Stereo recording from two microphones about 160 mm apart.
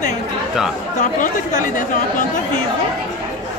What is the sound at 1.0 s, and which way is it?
Speech, 55° left (ahead or behind).